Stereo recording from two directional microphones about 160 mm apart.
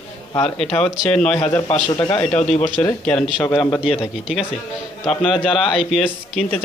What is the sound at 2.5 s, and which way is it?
Speech, 55° left (ahead or behind).